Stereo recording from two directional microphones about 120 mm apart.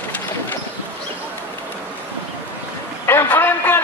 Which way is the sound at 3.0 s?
20° left (ahead or behind).